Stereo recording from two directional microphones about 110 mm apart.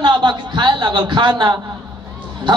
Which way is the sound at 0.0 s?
40° right (ahead or behind).